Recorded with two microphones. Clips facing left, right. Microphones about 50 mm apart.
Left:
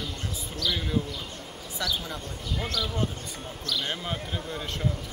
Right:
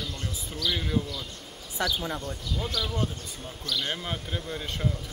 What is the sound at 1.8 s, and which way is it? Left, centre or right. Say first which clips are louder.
Speech: right 2 dB; right.